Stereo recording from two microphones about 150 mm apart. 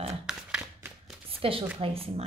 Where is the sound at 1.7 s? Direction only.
40° right (ahead or behind).